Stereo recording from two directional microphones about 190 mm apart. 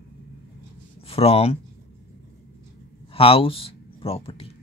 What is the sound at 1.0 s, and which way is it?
Speech, 30° left (ahead or behind).